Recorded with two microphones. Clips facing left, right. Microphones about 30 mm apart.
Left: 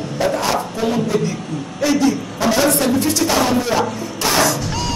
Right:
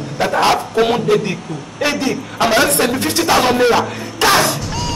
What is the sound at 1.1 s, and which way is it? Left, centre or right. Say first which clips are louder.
Speech: right 5 dB; right.